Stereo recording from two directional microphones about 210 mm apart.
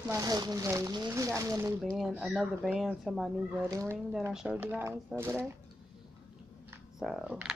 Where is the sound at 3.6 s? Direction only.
15° right (ahead or behind).